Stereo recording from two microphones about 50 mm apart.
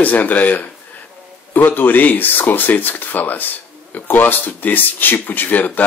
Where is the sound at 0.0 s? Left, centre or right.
Left.